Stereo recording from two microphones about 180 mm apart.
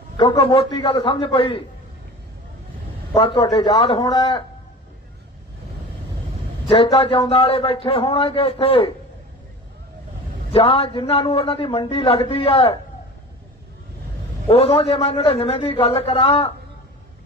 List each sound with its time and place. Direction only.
0.2 s a man's voice: 30° left (ahead or behind)
3.2 s a man's voice: 30° left (ahead or behind)
6.7 s a man's voice: 30° left (ahead or behind)
10.5 s a man's voice: 30° left (ahead or behind)
14.5 s a man's voice: 30° left (ahead or behind)